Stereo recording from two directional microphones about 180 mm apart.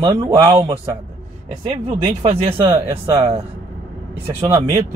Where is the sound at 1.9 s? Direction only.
40° right (ahead or behind).